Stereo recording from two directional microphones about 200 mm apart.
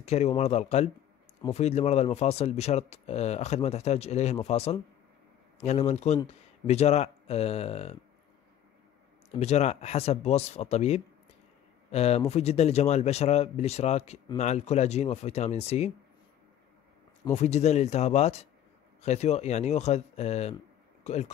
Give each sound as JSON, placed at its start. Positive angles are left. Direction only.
{"t": 0.0, "sound": "speech", "side_deg": 35}
{"t": 9.3, "sound": "speech", "side_deg": 35}
{"t": 17.3, "sound": "speech", "side_deg": 35}